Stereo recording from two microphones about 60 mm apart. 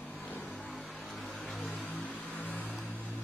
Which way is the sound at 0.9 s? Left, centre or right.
Centre.